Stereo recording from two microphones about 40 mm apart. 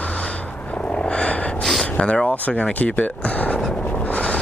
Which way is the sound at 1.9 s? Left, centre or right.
Left.